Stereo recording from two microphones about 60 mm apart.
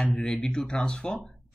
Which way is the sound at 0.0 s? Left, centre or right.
Centre.